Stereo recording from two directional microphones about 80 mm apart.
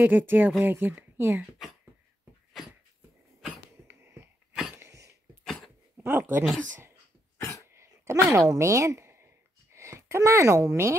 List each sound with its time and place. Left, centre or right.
0.0 s speech: right
3.8 s a sound: right
4.7 s dog: right
5.4 s dog: centre
5.9 s speech: right
7.7 s a sound: right
8.3 s speech: right